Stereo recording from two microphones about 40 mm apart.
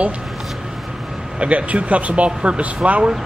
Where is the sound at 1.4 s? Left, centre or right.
Right.